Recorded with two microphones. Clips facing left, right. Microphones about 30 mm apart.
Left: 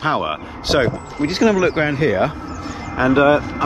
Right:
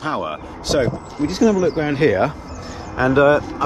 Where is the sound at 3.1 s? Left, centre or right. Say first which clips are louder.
Even; left.